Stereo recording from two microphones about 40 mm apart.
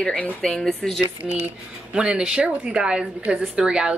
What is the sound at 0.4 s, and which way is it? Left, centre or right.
Speech, centre.